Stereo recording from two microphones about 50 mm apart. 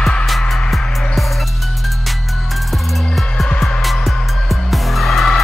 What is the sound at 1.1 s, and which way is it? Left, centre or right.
Music, centre.